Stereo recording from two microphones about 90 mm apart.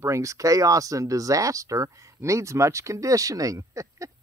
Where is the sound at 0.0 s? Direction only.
35° right (ahead or behind).